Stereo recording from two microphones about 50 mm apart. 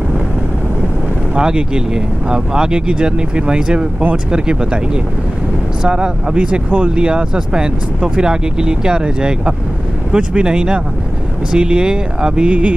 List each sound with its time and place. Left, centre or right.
1.3 s speech: centre